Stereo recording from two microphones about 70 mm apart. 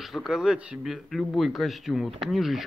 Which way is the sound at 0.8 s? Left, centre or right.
Centre.